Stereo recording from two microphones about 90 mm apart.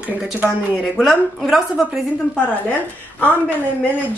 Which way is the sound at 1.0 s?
Centre (ahead or behind).